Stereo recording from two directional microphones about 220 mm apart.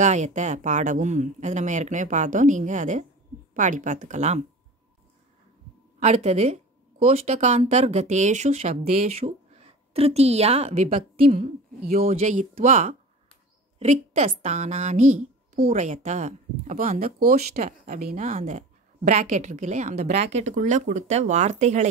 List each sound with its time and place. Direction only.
0.0 s a woman's voice: 35° right (ahead or behind)
5.9 s a woman's voice: 30° right (ahead or behind)